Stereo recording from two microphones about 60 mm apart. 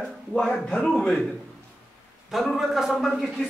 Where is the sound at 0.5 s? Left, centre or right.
Centre.